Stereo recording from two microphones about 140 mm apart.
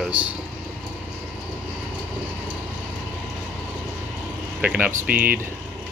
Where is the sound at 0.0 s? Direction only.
10° right (ahead or behind).